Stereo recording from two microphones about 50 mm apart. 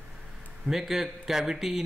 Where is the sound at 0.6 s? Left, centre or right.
Centre.